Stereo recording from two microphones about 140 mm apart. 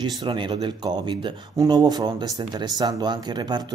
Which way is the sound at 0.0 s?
35° right (ahead or behind).